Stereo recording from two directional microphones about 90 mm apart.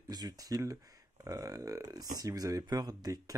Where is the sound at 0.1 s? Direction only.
45° right (ahead or behind).